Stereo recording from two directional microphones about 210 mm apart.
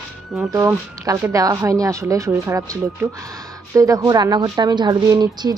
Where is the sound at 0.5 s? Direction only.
15° right (ahead or behind).